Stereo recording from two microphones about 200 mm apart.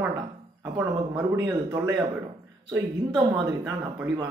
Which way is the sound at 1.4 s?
20° right (ahead or behind).